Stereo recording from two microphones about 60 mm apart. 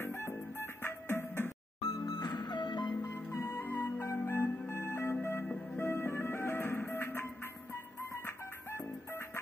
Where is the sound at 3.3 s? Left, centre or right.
Left.